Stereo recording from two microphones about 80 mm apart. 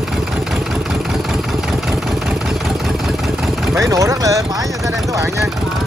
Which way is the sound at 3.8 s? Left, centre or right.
Right.